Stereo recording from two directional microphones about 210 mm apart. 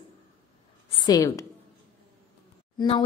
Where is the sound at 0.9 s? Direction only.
20° left (ahead or behind).